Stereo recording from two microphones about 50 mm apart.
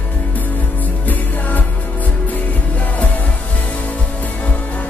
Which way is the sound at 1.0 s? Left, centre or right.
Left.